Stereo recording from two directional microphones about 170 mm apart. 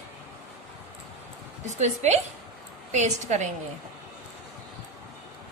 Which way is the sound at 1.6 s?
45° right (ahead or behind).